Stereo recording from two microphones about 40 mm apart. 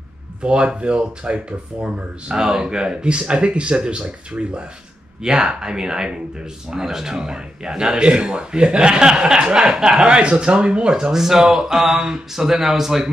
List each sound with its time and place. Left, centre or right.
0.4 s a man's voice: right
10.0 s a man's voice: right; by 13.1 s centre